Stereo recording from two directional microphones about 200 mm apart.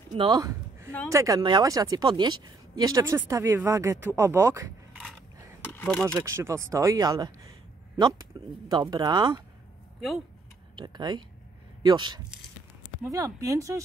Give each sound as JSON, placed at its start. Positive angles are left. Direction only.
{"t": 0.1, "sound": "speech", "side_deg": -25}
{"t": 5.6, "sound": "a sound", "side_deg": 10}
{"t": 6.1, "sound": "speech", "side_deg": -15}
{"t": 8.6, "sound": "speech", "side_deg": -20}
{"t": 10.8, "sound": "speech", "side_deg": -20}